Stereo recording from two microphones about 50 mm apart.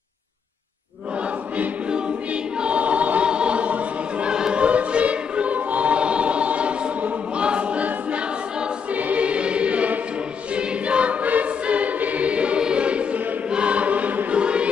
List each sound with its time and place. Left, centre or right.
2.6 s choir: right
4.3 s choir: centre
4.6 s choir: right